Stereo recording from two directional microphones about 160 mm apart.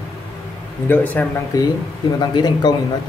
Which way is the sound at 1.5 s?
20° left (ahead or behind).